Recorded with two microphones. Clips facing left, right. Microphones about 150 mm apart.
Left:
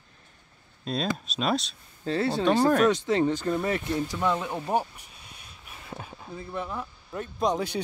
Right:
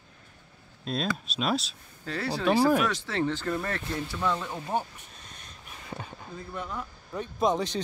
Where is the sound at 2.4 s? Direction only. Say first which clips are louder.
Even; 5° right (ahead or behind).